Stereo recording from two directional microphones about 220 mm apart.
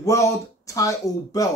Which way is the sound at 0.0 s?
15° left (ahead or behind).